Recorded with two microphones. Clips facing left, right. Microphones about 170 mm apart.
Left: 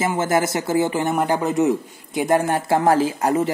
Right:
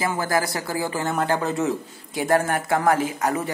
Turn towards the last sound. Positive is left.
turn(degrees=30)  # may be behind; listen again after turning